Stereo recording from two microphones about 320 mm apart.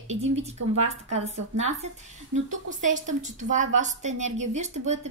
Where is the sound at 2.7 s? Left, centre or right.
Right.